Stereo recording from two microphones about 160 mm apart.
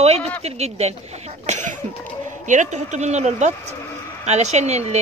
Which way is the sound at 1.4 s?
50° right (ahead or behind).